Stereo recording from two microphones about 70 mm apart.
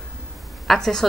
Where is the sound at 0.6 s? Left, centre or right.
Centre.